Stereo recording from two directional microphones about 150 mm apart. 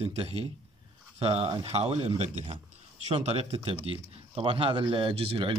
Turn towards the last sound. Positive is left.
turn(degrees=-35)  # may be behind; listen again after turning